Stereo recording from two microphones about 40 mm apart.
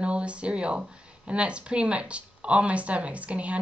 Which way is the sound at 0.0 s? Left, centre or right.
Right.